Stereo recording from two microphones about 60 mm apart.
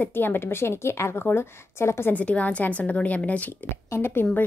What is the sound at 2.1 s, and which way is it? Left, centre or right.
Speech, left.